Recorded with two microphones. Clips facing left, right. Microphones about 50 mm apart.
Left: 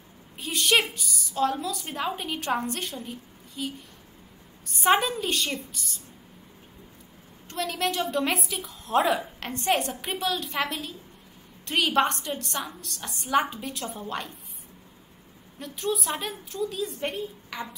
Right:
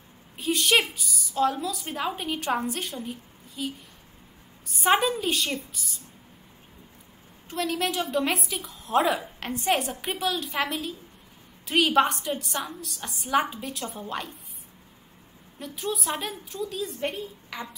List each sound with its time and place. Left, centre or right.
0.4 s a woman's voice: centre
7.4 s a woman's voice: centre
15.6 s a woman's voice: centre